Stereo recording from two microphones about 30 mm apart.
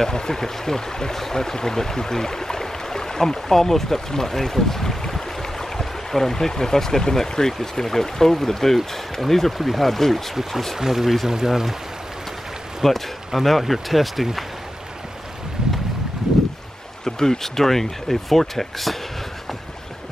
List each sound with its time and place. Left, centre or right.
0.0 s speech: centre
10.8 s speech: centre
12.8 s speech: centre
17.0 s speech: centre